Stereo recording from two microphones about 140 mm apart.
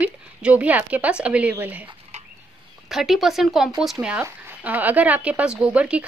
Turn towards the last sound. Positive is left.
turn(degrees=-10)  # may be behind; listen again after turning